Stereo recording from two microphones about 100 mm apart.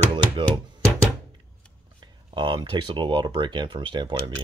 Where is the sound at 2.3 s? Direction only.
50° right (ahead or behind).